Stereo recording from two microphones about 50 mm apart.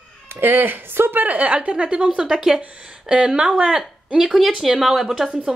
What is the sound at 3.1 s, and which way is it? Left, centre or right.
A woman's voice, right.